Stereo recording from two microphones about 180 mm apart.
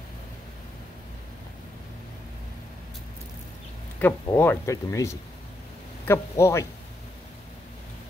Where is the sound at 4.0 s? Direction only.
10° left (ahead or behind).